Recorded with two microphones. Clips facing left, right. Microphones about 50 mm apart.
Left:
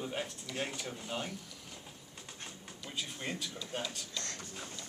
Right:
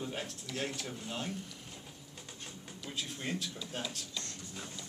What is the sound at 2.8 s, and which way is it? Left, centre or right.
Speech, centre.